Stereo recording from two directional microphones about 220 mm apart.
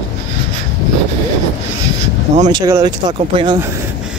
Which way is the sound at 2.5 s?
20° right (ahead or behind).